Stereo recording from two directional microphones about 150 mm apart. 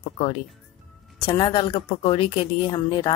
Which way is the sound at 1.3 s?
30° left (ahead or behind).